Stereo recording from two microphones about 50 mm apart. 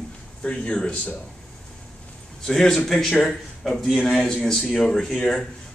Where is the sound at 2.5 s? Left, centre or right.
Centre.